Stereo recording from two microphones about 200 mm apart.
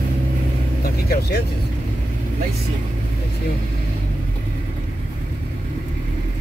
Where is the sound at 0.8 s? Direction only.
50° left (ahead or behind).